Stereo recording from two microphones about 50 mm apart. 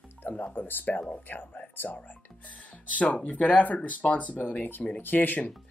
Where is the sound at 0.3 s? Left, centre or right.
Left.